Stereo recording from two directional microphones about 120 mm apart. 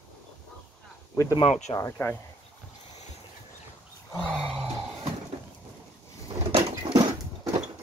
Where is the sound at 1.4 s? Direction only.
75° left (ahead or behind).